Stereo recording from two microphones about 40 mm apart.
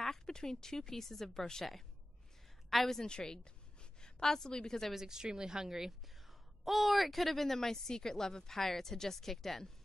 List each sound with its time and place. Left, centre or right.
0.0 s a woman's voice: centre
3.1 s a woman's voice: left
4.9 s speech: centre